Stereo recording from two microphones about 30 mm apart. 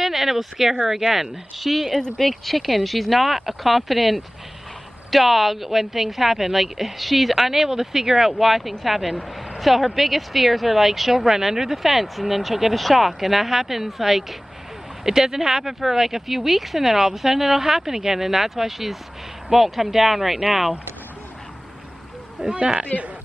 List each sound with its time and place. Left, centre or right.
0.0 s speech: centre
15.0 s speech: centre
22.4 s speech: right